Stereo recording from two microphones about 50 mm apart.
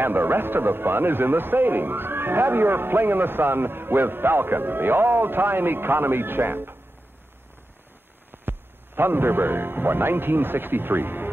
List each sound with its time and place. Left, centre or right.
0.0 s a man's voice: right
8.5 s a man's voice: right